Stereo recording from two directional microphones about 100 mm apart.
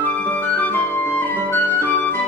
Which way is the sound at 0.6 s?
20° left (ahead or behind).